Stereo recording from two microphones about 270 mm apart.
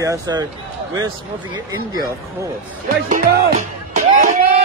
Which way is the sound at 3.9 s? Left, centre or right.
Right.